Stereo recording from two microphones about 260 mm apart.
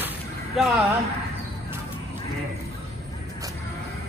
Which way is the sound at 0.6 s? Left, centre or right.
Centre.